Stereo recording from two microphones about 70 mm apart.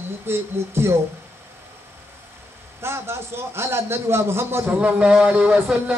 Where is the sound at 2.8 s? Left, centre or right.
Right.